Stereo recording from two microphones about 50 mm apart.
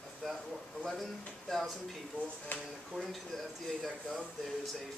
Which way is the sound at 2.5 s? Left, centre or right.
Left.